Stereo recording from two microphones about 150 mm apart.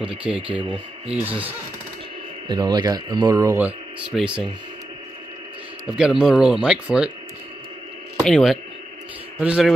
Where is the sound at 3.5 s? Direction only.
10° right (ahead or behind).